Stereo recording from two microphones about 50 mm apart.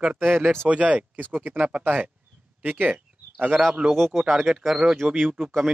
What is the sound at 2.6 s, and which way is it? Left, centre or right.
Speech, right.